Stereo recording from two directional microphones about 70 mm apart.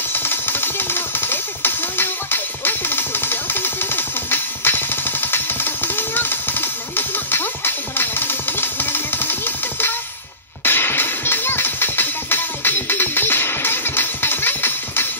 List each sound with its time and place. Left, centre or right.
0.1 s music: left